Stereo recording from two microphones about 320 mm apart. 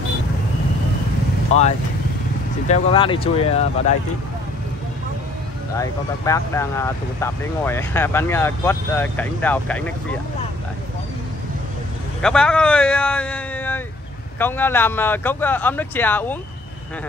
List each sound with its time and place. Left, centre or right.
1.5 s speech: left
5.8 s speech: centre
12.2 s a man's voice: centre